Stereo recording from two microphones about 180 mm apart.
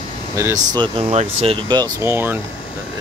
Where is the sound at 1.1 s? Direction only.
35° right (ahead or behind).